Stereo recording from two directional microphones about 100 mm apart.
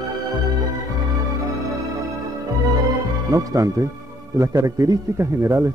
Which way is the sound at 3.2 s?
35° right (ahead or behind).